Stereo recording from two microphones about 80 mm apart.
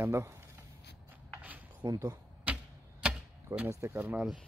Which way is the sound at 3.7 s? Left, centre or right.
Right.